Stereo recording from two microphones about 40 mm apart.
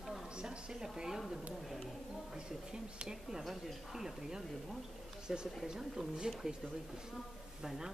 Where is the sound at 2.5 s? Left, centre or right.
Centre.